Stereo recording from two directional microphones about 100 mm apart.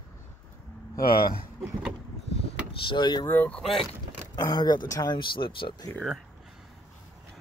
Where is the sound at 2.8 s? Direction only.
50° left (ahead or behind).